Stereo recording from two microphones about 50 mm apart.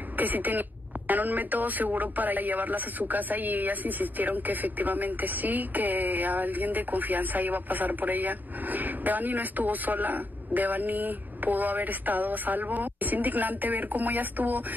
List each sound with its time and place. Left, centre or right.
0.2 s speech: right